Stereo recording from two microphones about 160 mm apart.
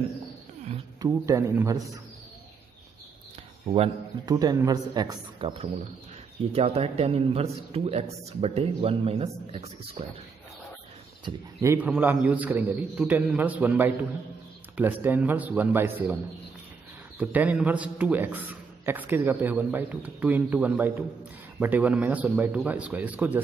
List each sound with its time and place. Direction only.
1.0 s a man's voice: 20° right (ahead or behind)
3.6 s a man's voice: 35° right (ahead or behind)
4.3 s a man's voice: 25° right (ahead or behind); by 10.0 s 40° right (ahead or behind)
11.3 s a man's voice: 30° right (ahead or behind)
11.6 s a man's voice: 15° right (ahead or behind)
17.2 s a man's voice: 10° right (ahead or behind)